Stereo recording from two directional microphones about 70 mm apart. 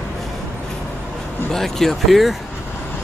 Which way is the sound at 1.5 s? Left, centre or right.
Centre.